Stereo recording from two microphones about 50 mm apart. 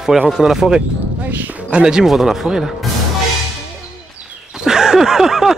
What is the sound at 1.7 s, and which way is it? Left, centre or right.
Speech, centre.